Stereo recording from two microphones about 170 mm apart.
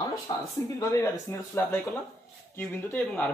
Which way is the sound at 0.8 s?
15° left (ahead or behind).